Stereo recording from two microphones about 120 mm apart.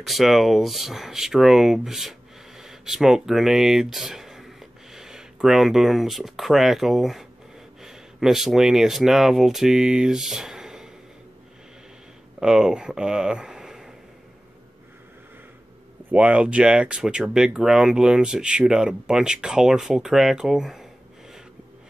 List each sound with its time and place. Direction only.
0.0 s speech: centre (ahead or behind)
12.4 s speech: 5° right (ahead or behind)
16.1 s speech: 10° right (ahead or behind)